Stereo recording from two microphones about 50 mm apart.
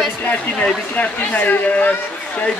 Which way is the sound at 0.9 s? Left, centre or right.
Left.